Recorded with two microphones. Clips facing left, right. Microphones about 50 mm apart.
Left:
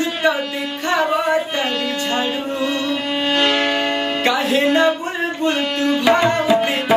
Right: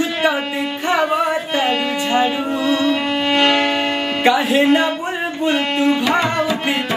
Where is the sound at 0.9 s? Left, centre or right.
Centre.